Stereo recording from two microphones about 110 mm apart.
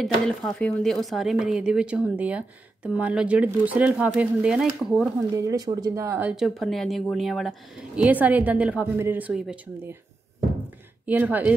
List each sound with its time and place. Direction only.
0.0 s a woman's voice: centre (ahead or behind)
5.3 s speech: 30° right (ahead or behind)
6.2 s speech: 5° right (ahead or behind)
7.9 s a woman's voice: 15° right (ahead or behind)
11.1 s a woman's voice: 15° right (ahead or behind)